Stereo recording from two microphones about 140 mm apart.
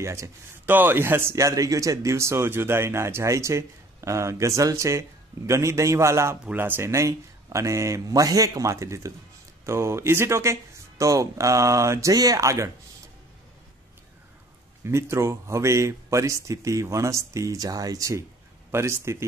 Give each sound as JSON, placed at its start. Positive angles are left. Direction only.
{"t": 0.0, "sound": "speech", "side_deg": -20}
{"t": 14.8, "sound": "speech", "side_deg": -20}